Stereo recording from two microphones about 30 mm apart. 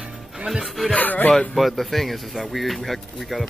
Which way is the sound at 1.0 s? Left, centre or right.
Left.